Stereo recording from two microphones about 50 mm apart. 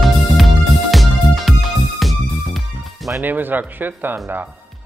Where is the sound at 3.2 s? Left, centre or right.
Right.